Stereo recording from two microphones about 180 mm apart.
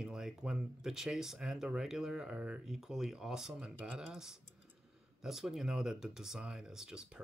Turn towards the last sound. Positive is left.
turn(degrees=-5)  # may be behind; listen again after turning